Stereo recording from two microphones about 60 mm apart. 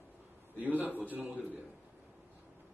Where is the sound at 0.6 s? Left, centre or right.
Right.